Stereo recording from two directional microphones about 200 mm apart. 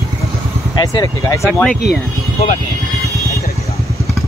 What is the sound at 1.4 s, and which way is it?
Speech, centre (ahead or behind).